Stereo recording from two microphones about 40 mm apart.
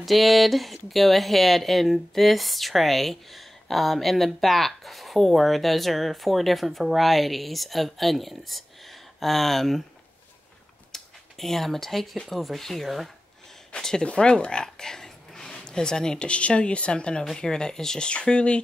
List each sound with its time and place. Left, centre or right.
0.0 s speech: centre
10.9 s a sound: centre
12.3 s speech: centre
13.7 s speech: centre
16.3 s speech: left